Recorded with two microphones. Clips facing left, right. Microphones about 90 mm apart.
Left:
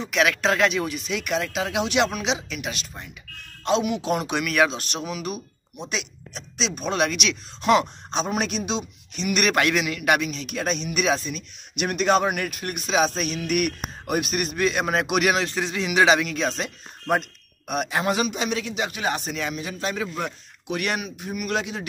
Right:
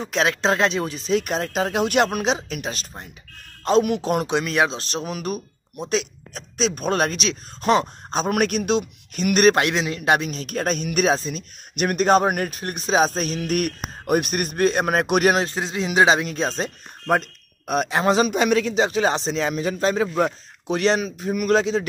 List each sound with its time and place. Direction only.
0.0 s a man's voice: 30° right (ahead or behind)
4.3 s a man's voice: 25° right (ahead or behind)
8.3 s a man's voice: 55° right (ahead or behind)
9.6 s a man's voice: 25° right (ahead or behind)
15.5 s a man's voice: 25° right (ahead or behind)
18.3 s a man's voice: 50° right (ahead or behind)
18.8 s a man's voice: 30° right (ahead or behind)
19.4 s a man's voice: 40° right (ahead or behind)
21.3 s a man's voice: 40° right (ahead or behind)